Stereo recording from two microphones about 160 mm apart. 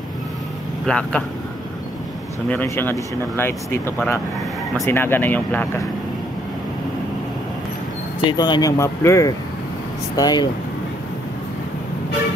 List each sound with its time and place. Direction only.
0.8 s speech: 5° left (ahead or behind)
2.5 s speech: 15° left (ahead or behind)
8.3 s speech: 25° left (ahead or behind)